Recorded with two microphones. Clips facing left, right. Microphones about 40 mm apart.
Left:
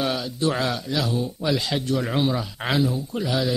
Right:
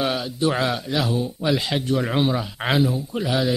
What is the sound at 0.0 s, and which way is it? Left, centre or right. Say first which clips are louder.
Speech: right 2 dB; centre.